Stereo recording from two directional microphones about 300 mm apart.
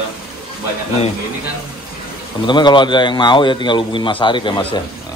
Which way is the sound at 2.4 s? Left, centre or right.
Centre.